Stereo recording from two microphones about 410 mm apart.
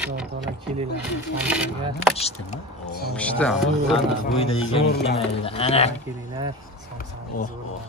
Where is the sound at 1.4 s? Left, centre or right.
Centre.